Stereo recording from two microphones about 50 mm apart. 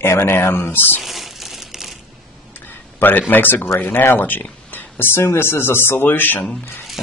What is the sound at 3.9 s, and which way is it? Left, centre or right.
Speech, left.